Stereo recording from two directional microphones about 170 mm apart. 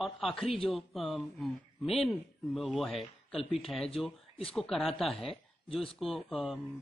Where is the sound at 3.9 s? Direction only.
35° left (ahead or behind).